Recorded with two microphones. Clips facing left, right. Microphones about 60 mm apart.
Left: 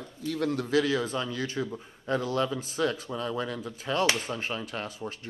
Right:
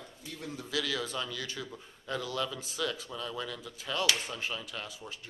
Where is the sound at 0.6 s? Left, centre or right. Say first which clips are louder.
Left 6 dB; left.